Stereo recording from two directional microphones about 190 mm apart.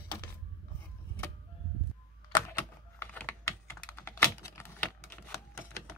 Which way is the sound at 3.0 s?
10° left (ahead or behind).